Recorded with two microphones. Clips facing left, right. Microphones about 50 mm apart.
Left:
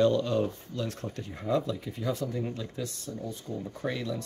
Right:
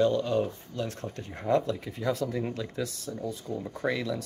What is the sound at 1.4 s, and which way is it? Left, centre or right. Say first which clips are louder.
Speech: right 3 dB; right.